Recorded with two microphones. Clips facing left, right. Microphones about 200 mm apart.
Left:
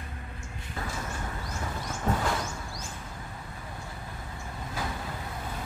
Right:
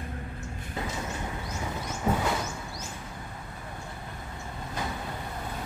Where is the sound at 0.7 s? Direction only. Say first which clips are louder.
Right 2 dB; 20° right (ahead or behind).